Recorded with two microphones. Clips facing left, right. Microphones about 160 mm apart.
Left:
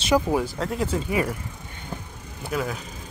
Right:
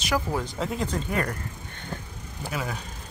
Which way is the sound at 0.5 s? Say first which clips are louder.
Left 3 dB; centre (ahead or behind).